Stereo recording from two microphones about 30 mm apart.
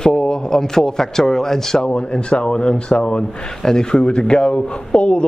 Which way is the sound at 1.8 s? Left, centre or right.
Left.